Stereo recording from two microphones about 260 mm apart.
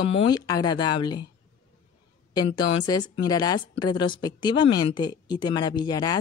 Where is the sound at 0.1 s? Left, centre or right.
Centre.